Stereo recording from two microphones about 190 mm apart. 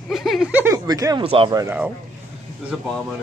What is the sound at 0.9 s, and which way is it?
Speech, 20° right (ahead or behind).